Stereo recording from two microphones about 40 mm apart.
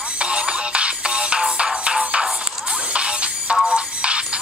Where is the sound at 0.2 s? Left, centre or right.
Right.